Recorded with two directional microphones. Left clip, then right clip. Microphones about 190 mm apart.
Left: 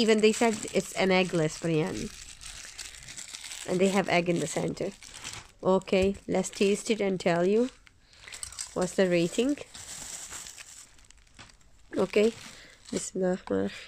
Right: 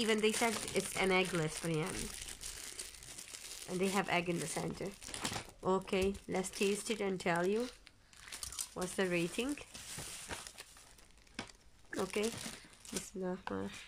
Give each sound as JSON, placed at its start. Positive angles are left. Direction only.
{"t": 0.0, "sound": "speech", "side_deg": 20}
{"t": 3.6, "sound": "speech", "side_deg": 25}
{"t": 8.3, "sound": "a sound", "side_deg": 20}
{"t": 8.7, "sound": "speech", "side_deg": 20}
{"t": 11.9, "sound": "speech", "side_deg": 25}
{"t": 13.0, "sound": "speech", "side_deg": 35}